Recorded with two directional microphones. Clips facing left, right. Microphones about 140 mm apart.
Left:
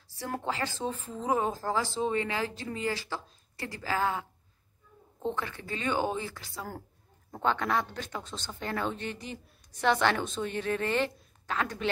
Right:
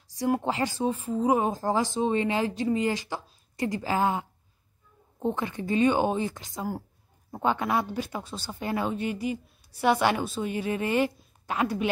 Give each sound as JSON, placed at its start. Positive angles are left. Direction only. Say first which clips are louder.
{"t": 0.2, "sound": "speech", "louder": "right 7 dB", "side_deg": -15}